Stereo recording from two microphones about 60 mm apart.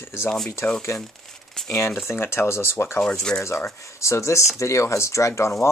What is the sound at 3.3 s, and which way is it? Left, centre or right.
Speech, centre.